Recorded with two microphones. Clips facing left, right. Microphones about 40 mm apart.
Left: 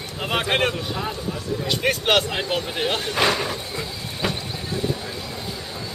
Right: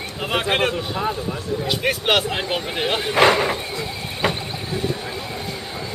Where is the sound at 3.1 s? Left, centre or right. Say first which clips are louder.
Right 8 dB; right.